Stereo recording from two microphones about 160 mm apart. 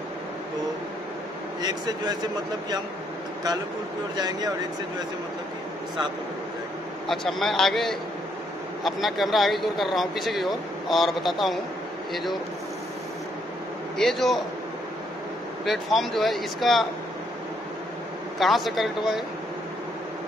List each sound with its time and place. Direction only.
1.6 s speech: 25° right (ahead or behind)
4.2 s speech: 25° right (ahead or behind)
7.1 s speech: centre (ahead or behind)
13.9 s speech: centre (ahead or behind)
15.6 s speech: centre (ahead or behind)
18.4 s speech: centre (ahead or behind)